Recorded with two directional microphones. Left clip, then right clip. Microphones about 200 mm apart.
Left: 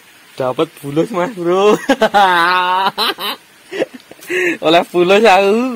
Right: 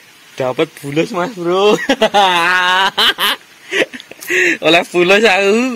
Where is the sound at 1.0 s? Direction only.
15° left (ahead or behind).